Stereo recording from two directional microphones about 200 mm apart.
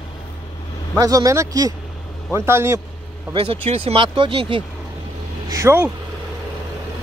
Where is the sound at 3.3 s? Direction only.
30° right (ahead or behind).